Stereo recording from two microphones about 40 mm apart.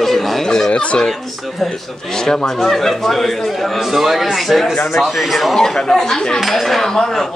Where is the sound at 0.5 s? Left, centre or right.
Centre.